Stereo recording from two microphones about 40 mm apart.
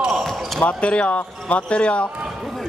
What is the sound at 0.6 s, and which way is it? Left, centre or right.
Speech, left.